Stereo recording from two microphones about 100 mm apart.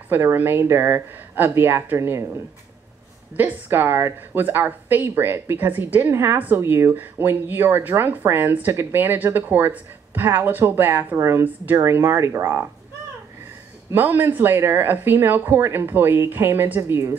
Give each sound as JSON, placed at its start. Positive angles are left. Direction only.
{"t": 0.1, "sound": "a woman's voice", "side_deg": -20}
{"t": 3.3, "sound": "a woman's voice", "side_deg": -20}
{"t": 13.9, "sound": "a woman's voice", "side_deg": -20}